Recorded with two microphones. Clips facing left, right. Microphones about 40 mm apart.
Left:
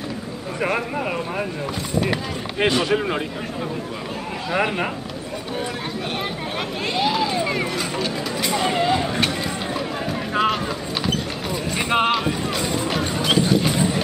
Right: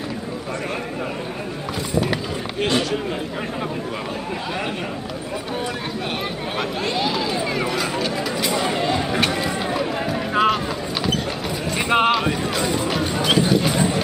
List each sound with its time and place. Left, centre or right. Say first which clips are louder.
2.6 s speech: left 2 dB; left
6.9 s a sound: left 4 dB; centre
11.7 s clip-clop: right 2 dB; centre